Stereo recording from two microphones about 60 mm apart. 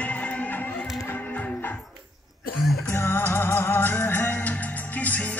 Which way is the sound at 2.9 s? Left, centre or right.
Left.